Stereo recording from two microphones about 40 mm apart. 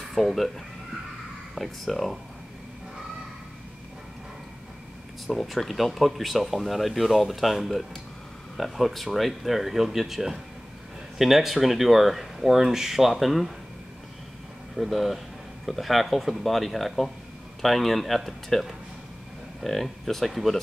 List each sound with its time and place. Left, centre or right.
0.1 s speech: centre
1.5 s speech: centre
5.2 s speech: centre
14.8 s speech: centre